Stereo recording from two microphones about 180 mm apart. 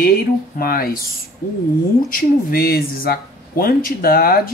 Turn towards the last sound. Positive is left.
turn(degrees=55)  # may be behind; listen again after turning